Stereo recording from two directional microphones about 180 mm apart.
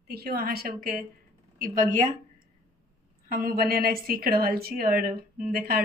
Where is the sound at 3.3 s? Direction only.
55° right (ahead or behind).